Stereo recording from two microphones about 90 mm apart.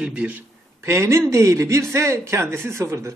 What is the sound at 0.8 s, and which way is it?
A man's voice, 30° right (ahead or behind).